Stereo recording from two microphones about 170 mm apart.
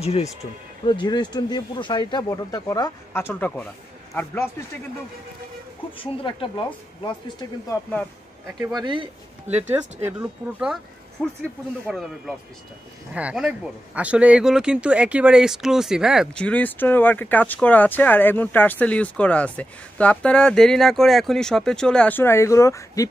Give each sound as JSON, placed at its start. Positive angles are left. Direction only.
{"t": 0.0, "sound": "speech", "side_deg": 40}
{"t": 5.9, "sound": "speech", "side_deg": 30}
{"t": 8.5, "sound": "speech", "side_deg": -25}
{"t": 11.9, "sound": "speech", "side_deg": -5}
{"t": 16.4, "sound": "speech", "side_deg": 10}